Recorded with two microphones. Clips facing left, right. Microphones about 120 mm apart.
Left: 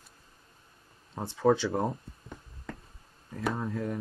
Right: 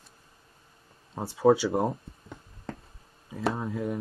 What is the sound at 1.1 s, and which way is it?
Speech, 10° right (ahead or behind).